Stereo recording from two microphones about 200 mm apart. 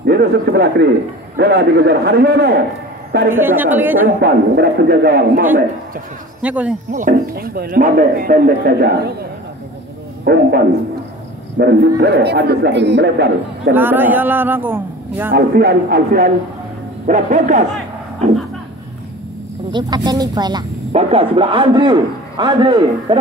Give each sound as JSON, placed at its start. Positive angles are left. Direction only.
{"t": 0.0, "sound": "a man's voice", "side_deg": -55}
{"t": 3.3, "sound": "a man's voice", "side_deg": -10}
{"t": 4.2, "sound": "speech", "side_deg": -50}
{"t": 6.4, "sound": "a man's voice", "side_deg": -5}
{"t": 6.9, "sound": "speech", "side_deg": -40}
{"t": 10.2, "sound": "a man's voice", "side_deg": -50}
{"t": 13.7, "sound": "a man's voice", "side_deg": -10}
{"t": 15.3, "sound": "speech", "side_deg": -50}
{"t": 17.0, "sound": "speech", "side_deg": -40}
{"t": 19.7, "sound": "speech", "side_deg": -20}